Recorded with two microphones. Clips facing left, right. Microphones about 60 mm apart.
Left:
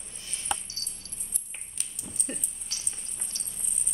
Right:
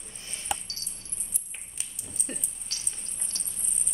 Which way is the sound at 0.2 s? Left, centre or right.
Right.